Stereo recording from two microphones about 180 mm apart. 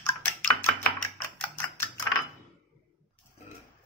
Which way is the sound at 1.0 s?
10° left (ahead or behind).